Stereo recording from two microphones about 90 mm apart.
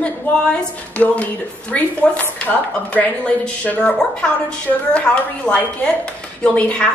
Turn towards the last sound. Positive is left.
turn(degrees=15)  # may be behind; listen again after turning